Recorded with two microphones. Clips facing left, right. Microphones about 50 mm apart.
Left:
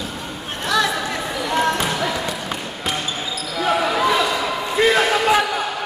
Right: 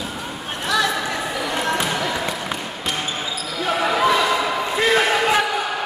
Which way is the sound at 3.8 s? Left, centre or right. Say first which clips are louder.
Right 4 dB; centre.